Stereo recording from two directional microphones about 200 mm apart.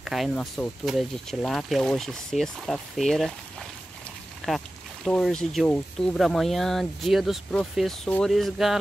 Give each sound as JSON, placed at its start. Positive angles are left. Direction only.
{"t": 0.0, "sound": "speech", "side_deg": 0}
{"t": 4.4, "sound": "speech", "side_deg": 5}